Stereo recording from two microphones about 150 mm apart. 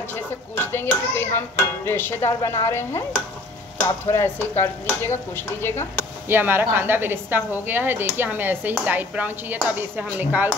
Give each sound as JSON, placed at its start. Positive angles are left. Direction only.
{"t": 0.1, "sound": "speech", "side_deg": 15}
{"t": 4.1, "sound": "speech", "side_deg": 15}
{"t": 6.2, "sound": "a woman's voice", "side_deg": -15}